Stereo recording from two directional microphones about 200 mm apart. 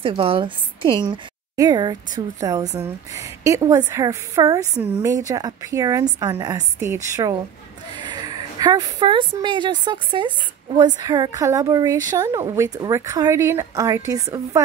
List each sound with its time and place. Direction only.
0.0 s a woman's voice: 25° right (ahead or behind)